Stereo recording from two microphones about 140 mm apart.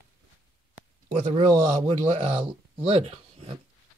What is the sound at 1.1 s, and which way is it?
Speech, 55° right (ahead or behind).